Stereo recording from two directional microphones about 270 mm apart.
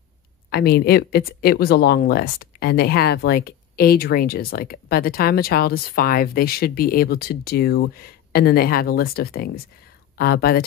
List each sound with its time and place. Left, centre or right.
0.5 s speech: left